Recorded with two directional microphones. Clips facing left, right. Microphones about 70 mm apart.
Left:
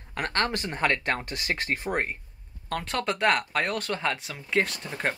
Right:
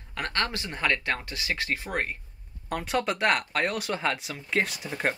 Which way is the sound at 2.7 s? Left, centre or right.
Centre.